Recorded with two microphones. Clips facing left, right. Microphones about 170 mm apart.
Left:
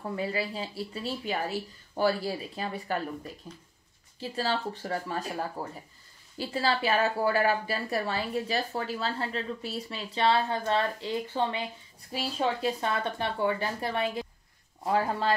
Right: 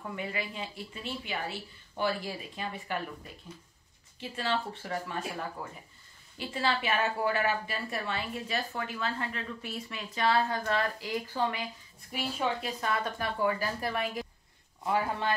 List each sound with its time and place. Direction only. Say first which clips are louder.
0.0 s a woman's voice: left 5 dB; 35° left (ahead or behind)